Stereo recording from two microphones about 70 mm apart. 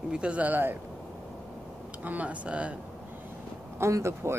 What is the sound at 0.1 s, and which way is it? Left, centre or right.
Speech, centre.